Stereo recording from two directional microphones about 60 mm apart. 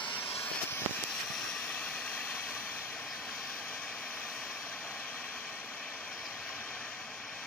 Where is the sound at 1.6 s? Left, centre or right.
Centre.